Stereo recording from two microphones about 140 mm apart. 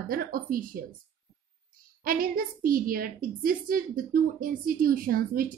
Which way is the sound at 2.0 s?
90° right.